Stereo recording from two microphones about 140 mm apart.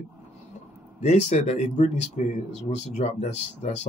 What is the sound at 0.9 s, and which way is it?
Speech, 55° left (ahead or behind).